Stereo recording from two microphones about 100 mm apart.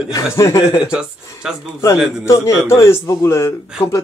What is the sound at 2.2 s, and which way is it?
Speech, 30° left (ahead or behind).